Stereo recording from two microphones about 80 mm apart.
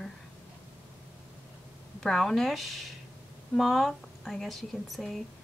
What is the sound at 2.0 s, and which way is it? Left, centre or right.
Speech, centre.